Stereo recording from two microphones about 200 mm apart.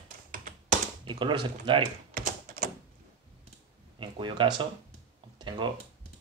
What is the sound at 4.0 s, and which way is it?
Speech, 25° right (ahead or behind).